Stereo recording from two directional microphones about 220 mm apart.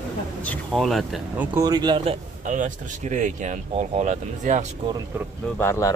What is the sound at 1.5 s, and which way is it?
Speech, 15° right (ahead or behind).